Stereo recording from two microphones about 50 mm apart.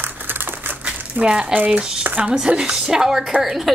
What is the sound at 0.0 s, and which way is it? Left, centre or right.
Typewriter, right.